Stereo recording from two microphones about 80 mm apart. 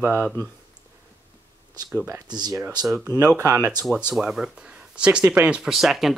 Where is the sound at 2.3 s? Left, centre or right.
Right.